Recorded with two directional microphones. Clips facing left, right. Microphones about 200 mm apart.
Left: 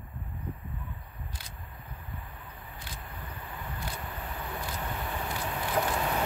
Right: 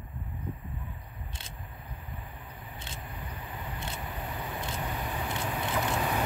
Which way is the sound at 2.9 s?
25° right (ahead or behind).